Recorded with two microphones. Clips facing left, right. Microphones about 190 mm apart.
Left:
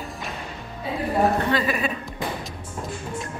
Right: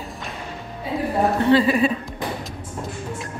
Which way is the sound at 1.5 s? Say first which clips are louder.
Right 7 dB; 30° right (ahead or behind).